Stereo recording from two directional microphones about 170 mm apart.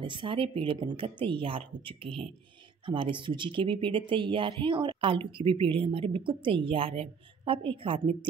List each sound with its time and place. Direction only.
0.0 s a woman's voice: 30° right (ahead or behind)